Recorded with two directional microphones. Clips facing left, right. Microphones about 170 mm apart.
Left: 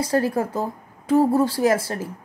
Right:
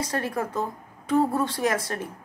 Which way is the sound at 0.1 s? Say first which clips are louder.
Left 7 dB; 30° left (ahead or behind).